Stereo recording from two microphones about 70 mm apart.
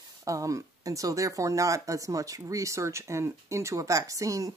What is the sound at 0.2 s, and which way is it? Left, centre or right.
Speech, right.